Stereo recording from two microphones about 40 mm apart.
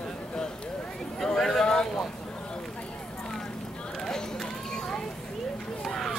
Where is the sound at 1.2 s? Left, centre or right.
Centre.